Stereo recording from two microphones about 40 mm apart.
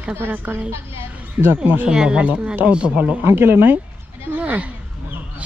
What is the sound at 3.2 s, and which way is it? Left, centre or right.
Speech, right.